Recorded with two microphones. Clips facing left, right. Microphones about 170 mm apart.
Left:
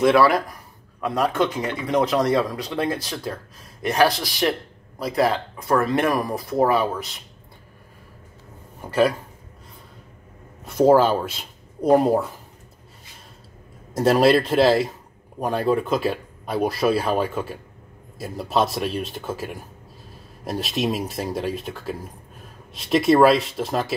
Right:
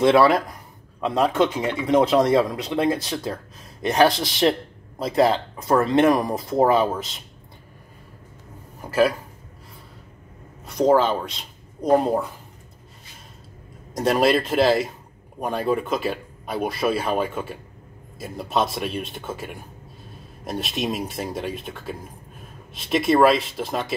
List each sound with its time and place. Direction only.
0.0 s speech: 25° right (ahead or behind)
10.6 s speech: 5° left (ahead or behind)
13.9 s speech: centre (ahead or behind)